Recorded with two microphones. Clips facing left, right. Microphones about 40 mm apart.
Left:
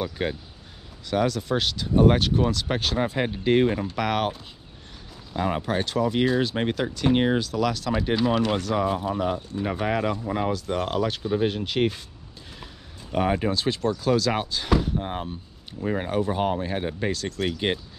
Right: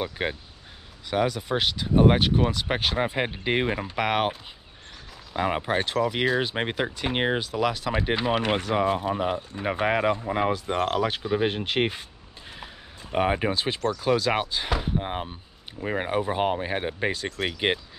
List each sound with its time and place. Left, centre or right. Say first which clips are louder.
0.0 s speech: left 1 dB; centre
13.1 s speech: even; right